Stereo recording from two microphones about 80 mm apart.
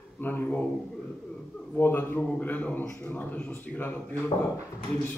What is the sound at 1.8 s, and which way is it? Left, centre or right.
A man's voice, left.